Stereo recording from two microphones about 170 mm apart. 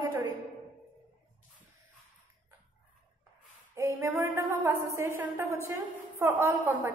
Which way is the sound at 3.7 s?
15° right (ahead or behind).